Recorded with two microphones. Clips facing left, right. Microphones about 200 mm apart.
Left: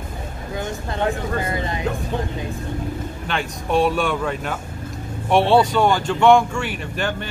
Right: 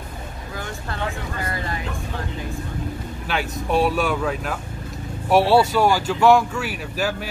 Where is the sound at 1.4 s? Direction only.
20° left (ahead or behind).